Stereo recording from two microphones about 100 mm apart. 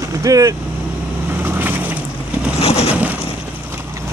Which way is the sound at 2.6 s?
90° left.